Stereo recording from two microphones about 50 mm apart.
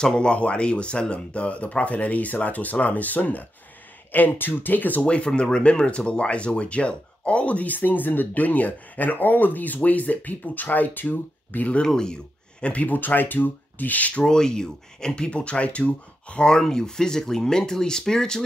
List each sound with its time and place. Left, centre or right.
0.0 s speech: centre; by 5.0 s left
5.0 s speech: left
11.8 s speech: centre
12.7 s speech: left
14.2 s speech: centre